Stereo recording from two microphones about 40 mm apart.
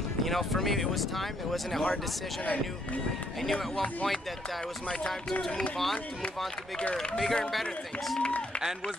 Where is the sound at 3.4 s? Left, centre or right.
Centre.